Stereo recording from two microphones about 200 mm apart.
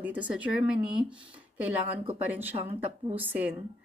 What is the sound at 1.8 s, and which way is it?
Speech, 30° right (ahead or behind).